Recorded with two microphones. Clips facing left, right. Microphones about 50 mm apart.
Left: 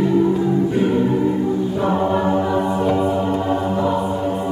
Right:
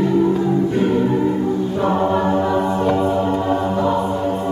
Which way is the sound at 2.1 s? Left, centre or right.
Centre.